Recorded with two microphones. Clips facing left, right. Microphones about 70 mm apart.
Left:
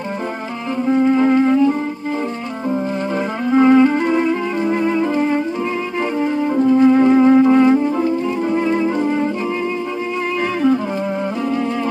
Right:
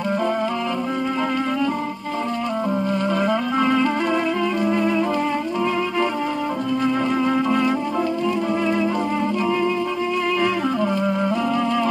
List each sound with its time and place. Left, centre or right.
0.9 s music: left
3.5 s music: left
4.8 s music: left
6.6 s music: left